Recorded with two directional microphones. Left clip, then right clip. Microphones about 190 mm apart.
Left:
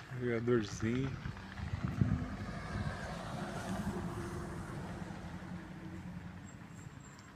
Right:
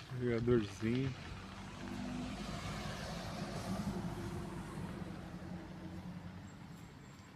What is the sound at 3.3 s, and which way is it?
Vehicle, 20° right (ahead or behind).